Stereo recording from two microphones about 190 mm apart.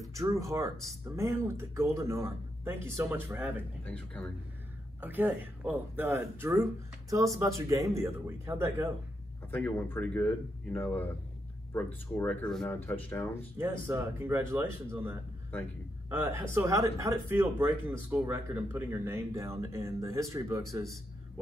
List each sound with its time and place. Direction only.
0.0 s speech: 15° right (ahead or behind)
3.8 s speech: 5° left (ahead or behind)
5.0 s speech: 10° right (ahead or behind)
9.5 s speech: 5° left (ahead or behind)
13.6 s speech: 10° right (ahead or behind)